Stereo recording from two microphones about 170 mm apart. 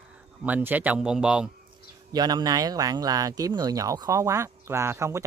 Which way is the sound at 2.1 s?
25° right (ahead or behind).